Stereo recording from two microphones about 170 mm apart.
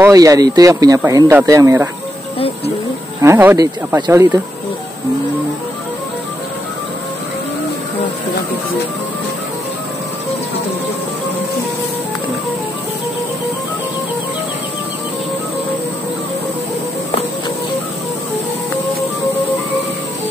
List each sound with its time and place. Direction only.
0.0 s speech: 20° right (ahead or behind)
2.3 s speech: 35° left (ahead or behind)
3.2 s speech: 15° right (ahead or behind)